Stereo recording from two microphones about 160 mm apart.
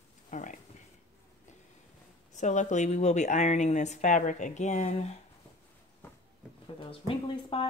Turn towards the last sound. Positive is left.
turn(degrees=35)  # may be behind; listen again after turning